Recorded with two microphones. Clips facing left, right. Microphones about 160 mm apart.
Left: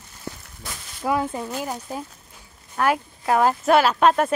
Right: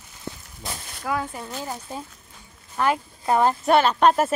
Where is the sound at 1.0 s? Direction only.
25° left (ahead or behind).